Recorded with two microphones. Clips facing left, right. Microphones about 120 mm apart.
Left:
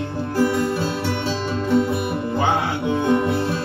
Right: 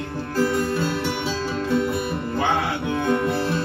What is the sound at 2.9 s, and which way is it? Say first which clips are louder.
Music: left 4 dB; 25° left (ahead or behind).